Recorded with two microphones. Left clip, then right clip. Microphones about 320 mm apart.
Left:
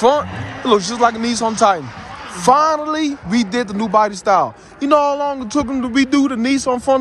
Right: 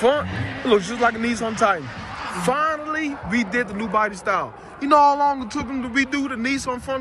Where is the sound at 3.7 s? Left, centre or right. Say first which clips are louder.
Left 7 dB; centre.